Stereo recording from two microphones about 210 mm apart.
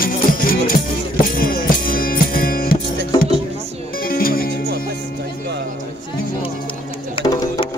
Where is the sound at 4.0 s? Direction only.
45° left (ahead or behind).